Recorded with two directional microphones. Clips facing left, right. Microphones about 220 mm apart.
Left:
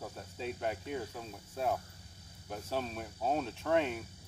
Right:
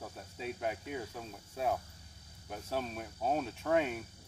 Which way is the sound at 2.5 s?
Centre (ahead or behind).